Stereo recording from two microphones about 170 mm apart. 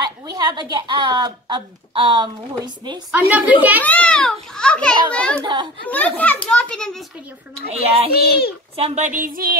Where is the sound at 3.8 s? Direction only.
5° left (ahead or behind).